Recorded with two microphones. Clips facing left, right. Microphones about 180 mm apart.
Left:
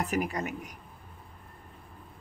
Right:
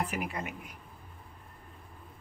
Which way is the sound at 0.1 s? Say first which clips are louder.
Left 6 dB; 40° left (ahead or behind).